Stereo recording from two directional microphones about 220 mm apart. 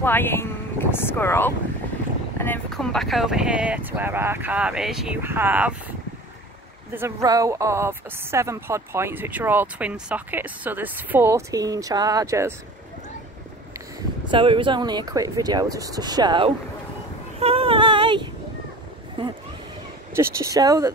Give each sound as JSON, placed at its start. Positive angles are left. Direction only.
{"t": 0.0, "sound": "speech", "side_deg": 10}
{"t": 6.9, "sound": "speech", "side_deg": -10}
{"t": 14.3, "sound": "speech", "side_deg": -25}
{"t": 17.4, "sound": "female singing", "side_deg": -25}
{"t": 20.2, "sound": "speech", "side_deg": -15}